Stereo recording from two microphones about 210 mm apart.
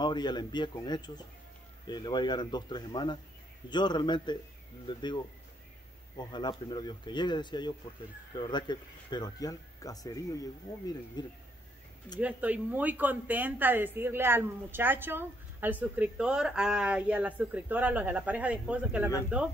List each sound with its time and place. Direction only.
0.0 s speech: 20° left (ahead or behind)
12.2 s a woman's voice: 5° right (ahead or behind)